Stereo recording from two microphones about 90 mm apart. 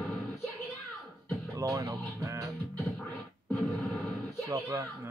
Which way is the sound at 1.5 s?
40° right (ahead or behind).